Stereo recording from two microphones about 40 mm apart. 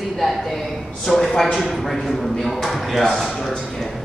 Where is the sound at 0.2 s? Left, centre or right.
Centre.